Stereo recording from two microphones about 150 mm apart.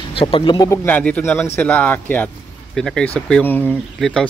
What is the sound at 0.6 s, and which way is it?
Speech, 10° left (ahead or behind).